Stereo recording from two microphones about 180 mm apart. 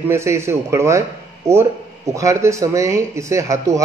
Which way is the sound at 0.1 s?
15° right (ahead or behind).